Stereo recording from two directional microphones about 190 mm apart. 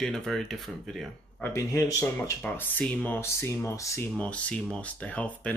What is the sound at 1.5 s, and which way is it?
Speech, 15° left (ahead or behind).